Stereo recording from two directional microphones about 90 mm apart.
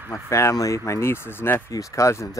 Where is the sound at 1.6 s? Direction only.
35° left (ahead or behind).